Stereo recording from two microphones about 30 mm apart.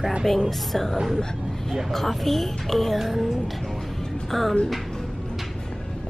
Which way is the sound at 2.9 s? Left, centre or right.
Centre.